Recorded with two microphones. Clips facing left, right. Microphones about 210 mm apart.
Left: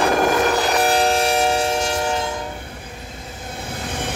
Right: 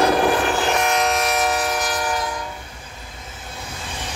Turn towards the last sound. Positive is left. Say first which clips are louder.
# left 6 dB
turn(degrees=55)  # may be behind; listen again after turning